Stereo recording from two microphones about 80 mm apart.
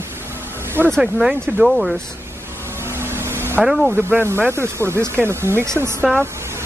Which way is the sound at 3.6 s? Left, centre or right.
Centre.